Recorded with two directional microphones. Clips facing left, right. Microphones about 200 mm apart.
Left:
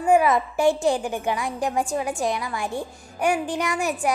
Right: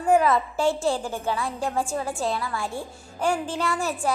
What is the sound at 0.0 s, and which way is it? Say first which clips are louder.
A woman's voice: left 1 dB; 10° left (ahead or behind).